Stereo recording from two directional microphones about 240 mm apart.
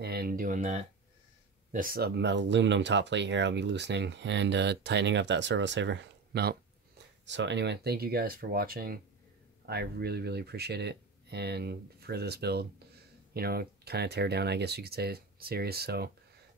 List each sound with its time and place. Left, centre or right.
0.0 s speech: right